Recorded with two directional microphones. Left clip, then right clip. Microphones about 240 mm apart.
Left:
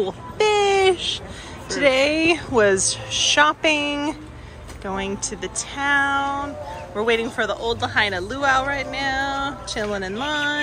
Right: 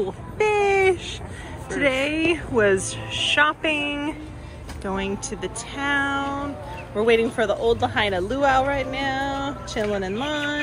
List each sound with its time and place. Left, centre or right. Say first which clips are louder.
0.0 s a sound: left 2 dB; centre
1.8 s a woman's voice: left 4 dB; centre
4.8 s speech: left 1 dB; centre